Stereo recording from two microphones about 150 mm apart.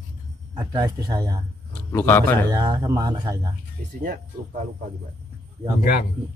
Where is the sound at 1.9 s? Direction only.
15° left (ahead or behind).